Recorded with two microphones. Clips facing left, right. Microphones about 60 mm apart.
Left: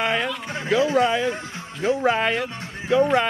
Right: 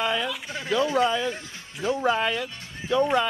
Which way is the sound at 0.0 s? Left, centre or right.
Left.